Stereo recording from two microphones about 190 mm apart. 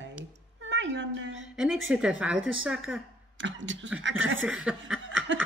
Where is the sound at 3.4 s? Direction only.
75° right (ahead or behind).